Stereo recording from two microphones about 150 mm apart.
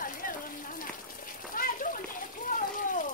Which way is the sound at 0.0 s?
65° left (ahead or behind).